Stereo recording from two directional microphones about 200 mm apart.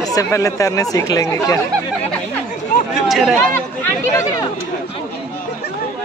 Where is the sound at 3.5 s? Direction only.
15° left (ahead or behind).